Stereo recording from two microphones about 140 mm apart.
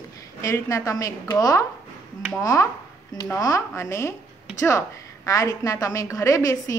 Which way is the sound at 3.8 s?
20° left (ahead or behind).